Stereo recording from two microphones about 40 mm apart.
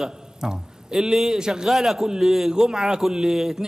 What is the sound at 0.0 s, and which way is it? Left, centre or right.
A man's voice, centre.